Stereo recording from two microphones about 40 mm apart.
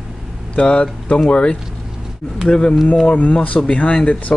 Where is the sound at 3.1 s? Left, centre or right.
Left.